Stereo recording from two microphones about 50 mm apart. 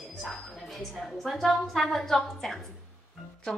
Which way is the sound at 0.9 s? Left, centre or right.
Centre.